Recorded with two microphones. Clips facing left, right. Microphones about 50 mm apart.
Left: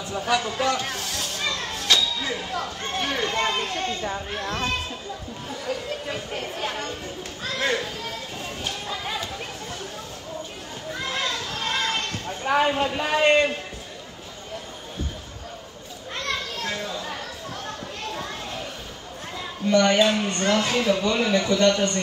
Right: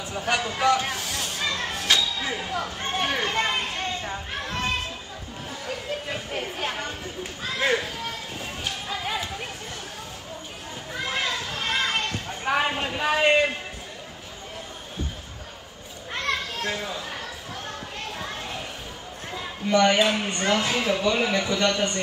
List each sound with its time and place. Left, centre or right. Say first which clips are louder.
0.3 s a man's voice: right 1 dB; right
0.8 s speech: even; centre
6.1 s speech: even; centre
8.8 s music: right 2 dB; centre
10.9 s children playing: even; centre
12.9 s speech: right 2 dB; centre
16.6 s speech: even; centre
19.7 s speech: left 1 dB; centre